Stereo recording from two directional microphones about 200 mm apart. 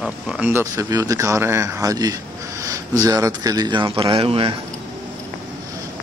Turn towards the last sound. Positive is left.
turn(degrees=-30)  # may be behind; listen again after turning